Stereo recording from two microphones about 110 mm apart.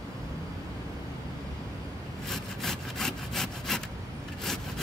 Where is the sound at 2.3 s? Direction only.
5° left (ahead or behind).